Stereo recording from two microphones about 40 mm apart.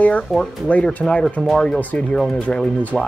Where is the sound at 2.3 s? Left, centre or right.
Left.